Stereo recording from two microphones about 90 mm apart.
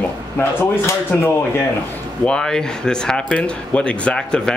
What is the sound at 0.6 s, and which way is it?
Speech, 25° left (ahead or behind).